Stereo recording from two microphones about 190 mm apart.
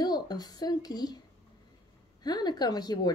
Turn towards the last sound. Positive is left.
turn(degrees=20)  # may be behind; listen again after turning